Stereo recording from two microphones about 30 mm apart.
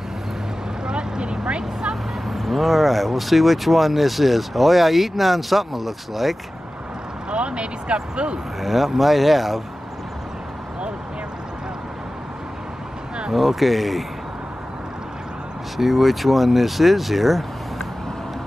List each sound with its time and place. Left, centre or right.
0.8 s vehicle: right
1.4 s speech: right
2.2 s speech: centre
7.2 s speech: right
8.5 s speech: centre
13.3 s speech: centre
15.8 s speech: centre